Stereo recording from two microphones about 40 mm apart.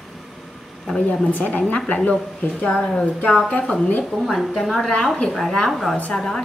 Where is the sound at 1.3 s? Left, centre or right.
Left.